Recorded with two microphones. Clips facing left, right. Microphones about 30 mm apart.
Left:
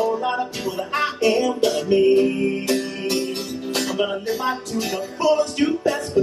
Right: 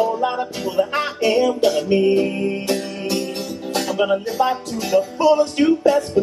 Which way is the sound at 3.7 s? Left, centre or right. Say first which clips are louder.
Right 3 dB; centre.